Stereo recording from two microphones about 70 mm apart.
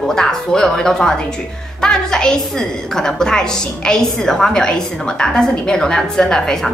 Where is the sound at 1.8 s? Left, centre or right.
Centre.